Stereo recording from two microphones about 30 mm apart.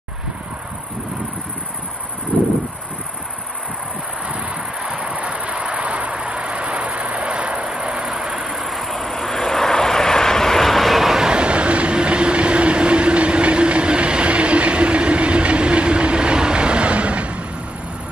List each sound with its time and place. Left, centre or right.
2.3 s a sound: left
4.8 s a sound: right
5.1 s vehicle: right
8.2 s vehicle: centre
8.5 s vehicle: centre
11.2 s train: right